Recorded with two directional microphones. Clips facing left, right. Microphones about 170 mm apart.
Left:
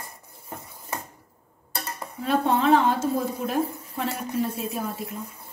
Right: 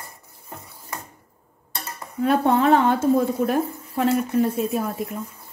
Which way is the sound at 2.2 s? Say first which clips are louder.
Right 4 dB; 55° right (ahead or behind).